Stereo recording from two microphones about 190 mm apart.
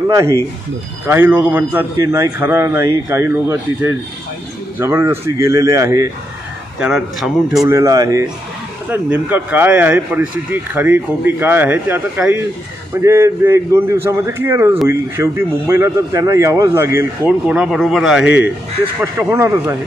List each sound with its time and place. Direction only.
0.1 s speech: 15° right (ahead or behind)
6.8 s speech: centre (ahead or behind)
7.6 s speech: 15° right (ahead or behind)
18.9 s speech: 15° right (ahead or behind)